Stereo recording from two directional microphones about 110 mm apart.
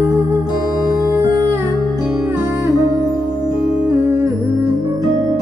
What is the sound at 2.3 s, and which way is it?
Music, 25° right (ahead or behind).